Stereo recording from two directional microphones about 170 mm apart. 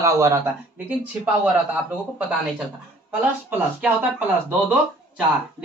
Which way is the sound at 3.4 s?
10° right (ahead or behind).